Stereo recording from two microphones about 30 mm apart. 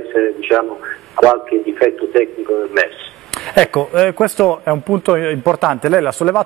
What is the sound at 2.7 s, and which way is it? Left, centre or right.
A man's voice, left.